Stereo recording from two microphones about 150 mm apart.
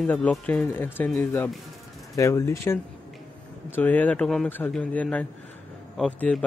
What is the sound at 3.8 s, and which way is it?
Speech, 10° left (ahead or behind).